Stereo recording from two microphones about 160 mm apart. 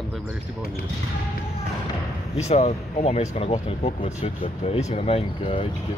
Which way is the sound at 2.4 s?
45° left (ahead or behind).